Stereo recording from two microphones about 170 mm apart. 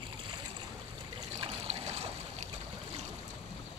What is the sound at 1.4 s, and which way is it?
Trickle, 35° right (ahead or behind).